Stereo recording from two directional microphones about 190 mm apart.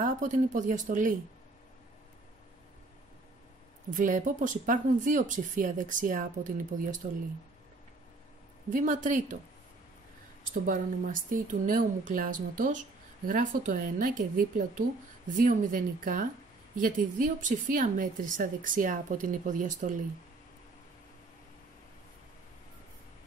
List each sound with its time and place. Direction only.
0.0 s speech: 40° right (ahead or behind)
3.9 s speech: 45° right (ahead or behind)
8.6 s speech: 45° right (ahead or behind)
10.5 s speech: 45° right (ahead or behind)
17.4 s speech: 45° right (ahead or behind)